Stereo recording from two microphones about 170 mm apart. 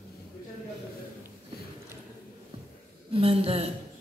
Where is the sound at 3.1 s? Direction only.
35° right (ahead or behind).